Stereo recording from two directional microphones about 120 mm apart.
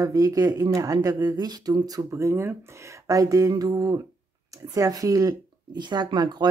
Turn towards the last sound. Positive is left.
turn(degrees=-35)  # may be behind; listen again after turning